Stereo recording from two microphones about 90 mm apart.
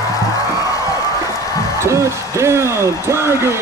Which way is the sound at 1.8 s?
35° right (ahead or behind).